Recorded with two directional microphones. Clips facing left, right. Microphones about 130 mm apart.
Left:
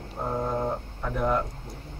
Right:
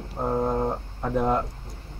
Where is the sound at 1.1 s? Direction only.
25° right (ahead or behind).